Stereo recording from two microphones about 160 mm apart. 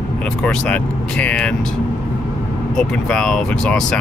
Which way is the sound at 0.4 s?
5° left (ahead or behind).